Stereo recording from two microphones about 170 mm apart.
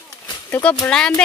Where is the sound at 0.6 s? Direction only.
5° left (ahead or behind).